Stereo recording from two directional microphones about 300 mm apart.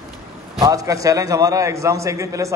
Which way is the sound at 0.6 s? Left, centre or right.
Centre.